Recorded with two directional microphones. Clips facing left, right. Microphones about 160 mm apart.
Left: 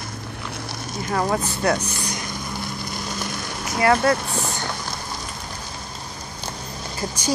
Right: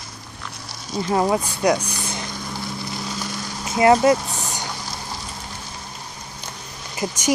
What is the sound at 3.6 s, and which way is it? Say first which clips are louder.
Speech: right 4 dB; 20° right (ahead or behind).